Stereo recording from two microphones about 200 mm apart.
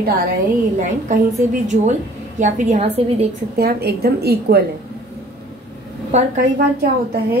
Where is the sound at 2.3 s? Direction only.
40° right (ahead or behind).